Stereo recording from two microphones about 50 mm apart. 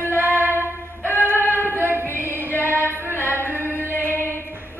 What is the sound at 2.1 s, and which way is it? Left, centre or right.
Music, left.